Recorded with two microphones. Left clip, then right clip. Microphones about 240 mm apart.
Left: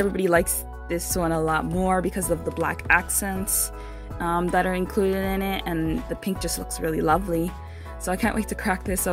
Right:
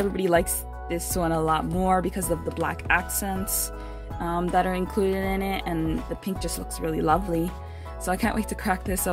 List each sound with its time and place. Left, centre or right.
0.1 s speech: centre